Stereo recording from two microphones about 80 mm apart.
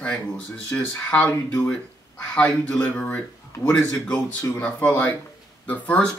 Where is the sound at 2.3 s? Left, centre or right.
Centre.